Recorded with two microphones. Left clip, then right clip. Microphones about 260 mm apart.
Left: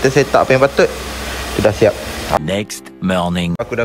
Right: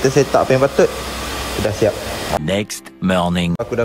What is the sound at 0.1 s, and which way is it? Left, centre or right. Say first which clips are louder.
Speech: left 2 dB; centre.